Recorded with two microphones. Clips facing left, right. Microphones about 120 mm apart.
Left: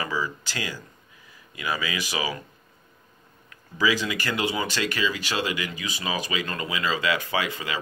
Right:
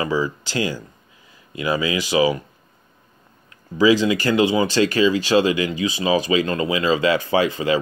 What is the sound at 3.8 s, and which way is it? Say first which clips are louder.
Speech: right 9 dB; 25° right (ahead or behind).